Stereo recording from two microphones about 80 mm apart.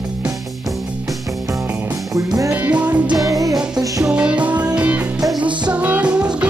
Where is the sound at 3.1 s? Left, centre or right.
Right.